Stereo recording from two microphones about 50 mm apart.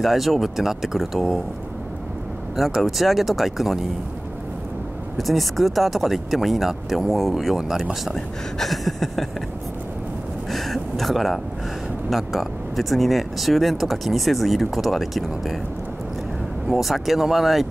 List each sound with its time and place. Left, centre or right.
0.0 s speech: centre
2.8 s speech: centre
5.1 s speech: centre
10.5 s speech: centre
16.6 s speech: centre